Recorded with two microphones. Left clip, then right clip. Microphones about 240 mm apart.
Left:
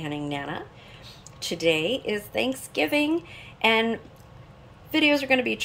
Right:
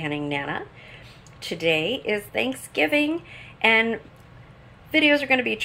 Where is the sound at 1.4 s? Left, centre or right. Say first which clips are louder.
Right 1 dB; left.